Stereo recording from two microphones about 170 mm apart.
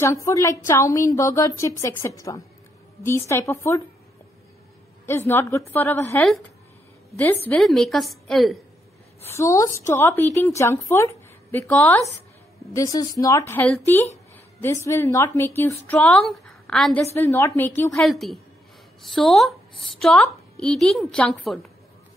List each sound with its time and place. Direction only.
0.0 s a woman's voice: 20° left (ahead or behind)
5.0 s a woman's voice: 15° left (ahead or behind)
7.4 s a woman's voice: 5° left (ahead or behind)
9.3 s a woman's voice: 20° left (ahead or behind)
17.0 s a woman's voice: 15° left (ahead or behind)
17.9 s a woman's voice: centre (ahead or behind)